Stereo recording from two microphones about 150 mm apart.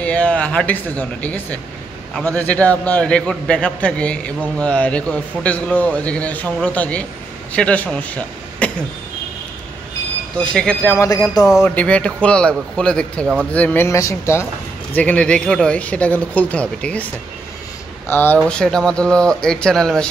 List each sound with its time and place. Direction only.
0.0 s a man's voice: 10° left (ahead or behind)
10.3 s a man's voice: 5° left (ahead or behind)
11.0 s speech: 20° left (ahead or behind)
11.6 s a man's voice: 10° left (ahead or behind)
15.0 s a man's voice: 10° left (ahead or behind)